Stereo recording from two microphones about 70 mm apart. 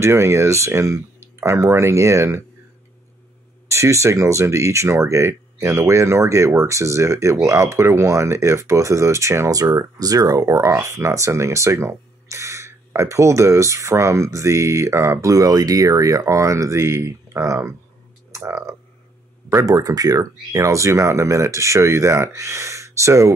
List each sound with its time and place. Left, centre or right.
0.0 s speech: right
3.6 s speech: right
9.6 s speech: right
15.3 s speech: right
19.5 s speech: right